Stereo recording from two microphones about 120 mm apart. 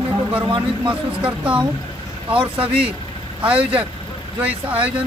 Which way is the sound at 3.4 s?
10° right (ahead or behind).